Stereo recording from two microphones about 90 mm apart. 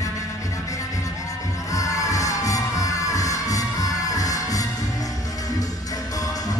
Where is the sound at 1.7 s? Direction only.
40° left (ahead or behind).